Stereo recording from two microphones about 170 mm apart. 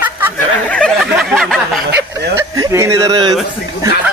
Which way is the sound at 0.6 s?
5° left (ahead or behind).